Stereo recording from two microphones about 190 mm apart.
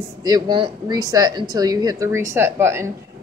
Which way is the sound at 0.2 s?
20° right (ahead or behind).